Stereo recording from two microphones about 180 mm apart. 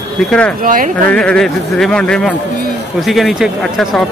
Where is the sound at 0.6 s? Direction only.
50° right (ahead or behind).